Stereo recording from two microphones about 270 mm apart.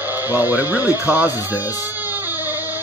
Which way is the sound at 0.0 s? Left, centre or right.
Centre.